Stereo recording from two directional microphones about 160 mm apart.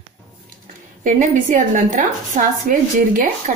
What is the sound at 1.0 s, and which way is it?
A woman's voice, 55° right (ahead or behind).